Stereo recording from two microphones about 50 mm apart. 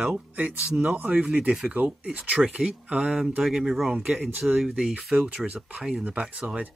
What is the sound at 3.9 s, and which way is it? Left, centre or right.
Speech, centre.